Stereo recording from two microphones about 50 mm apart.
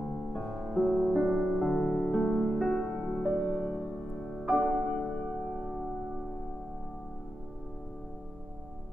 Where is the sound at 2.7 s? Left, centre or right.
Centre.